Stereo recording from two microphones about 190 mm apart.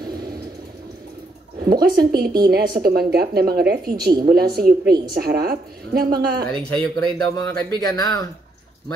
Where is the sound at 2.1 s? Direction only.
50° right (ahead or behind).